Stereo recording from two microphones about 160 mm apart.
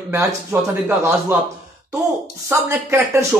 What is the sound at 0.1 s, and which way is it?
Speech, 15° right (ahead or behind).